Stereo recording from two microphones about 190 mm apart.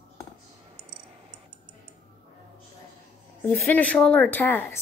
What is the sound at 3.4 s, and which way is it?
A woman's voice, 10° left (ahead or behind).